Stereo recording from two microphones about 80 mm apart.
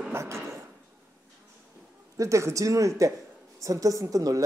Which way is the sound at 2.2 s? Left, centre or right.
Right.